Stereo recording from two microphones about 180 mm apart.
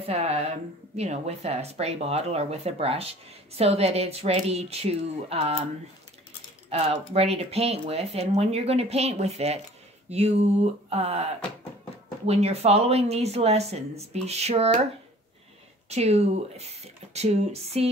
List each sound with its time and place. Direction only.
0.0 s a woman's voice: 35° right (ahead or behind)
6.7 s speech: 35° right (ahead or behind)
12.3 s speech: 35° right (ahead or behind)
15.9 s speech: 35° right (ahead or behind)